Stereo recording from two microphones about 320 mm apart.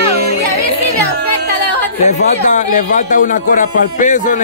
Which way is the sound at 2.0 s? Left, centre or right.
Left.